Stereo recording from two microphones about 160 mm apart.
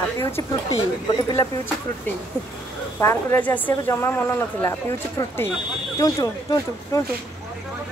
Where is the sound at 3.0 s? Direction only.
10° left (ahead or behind).